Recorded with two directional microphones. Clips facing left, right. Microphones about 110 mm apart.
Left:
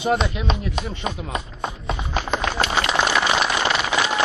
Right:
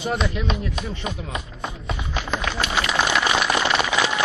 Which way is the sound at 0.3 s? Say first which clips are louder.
Left 1 dB; 25° left (ahead or behind).